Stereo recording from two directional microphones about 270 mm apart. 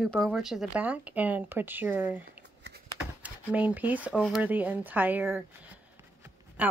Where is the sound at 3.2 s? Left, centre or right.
Centre.